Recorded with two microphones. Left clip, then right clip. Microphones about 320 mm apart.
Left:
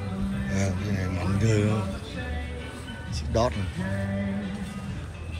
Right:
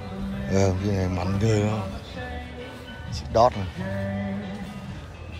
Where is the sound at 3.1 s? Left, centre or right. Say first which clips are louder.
Right 7 dB; centre.